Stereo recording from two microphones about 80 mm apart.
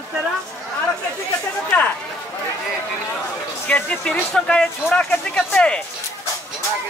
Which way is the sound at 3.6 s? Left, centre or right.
Centre.